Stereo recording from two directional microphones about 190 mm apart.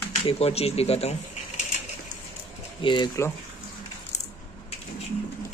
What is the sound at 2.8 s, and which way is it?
Speech, 25° left (ahead or behind).